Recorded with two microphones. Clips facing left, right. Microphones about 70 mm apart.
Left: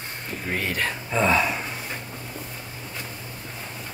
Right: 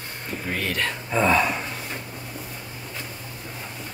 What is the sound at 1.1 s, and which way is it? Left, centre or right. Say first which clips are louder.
Gasp: right 1 dB; centre.